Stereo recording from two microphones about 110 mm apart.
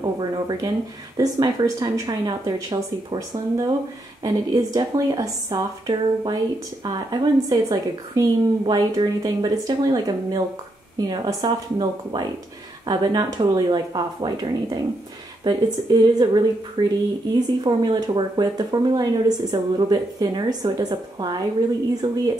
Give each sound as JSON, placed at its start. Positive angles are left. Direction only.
{"t": 0.0, "sound": "speech", "side_deg": -40}